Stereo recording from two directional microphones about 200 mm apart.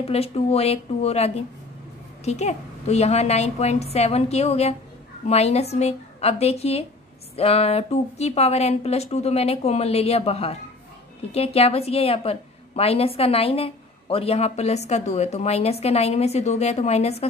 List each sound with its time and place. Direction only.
0.0 s a woman's voice: 30° left (ahead or behind)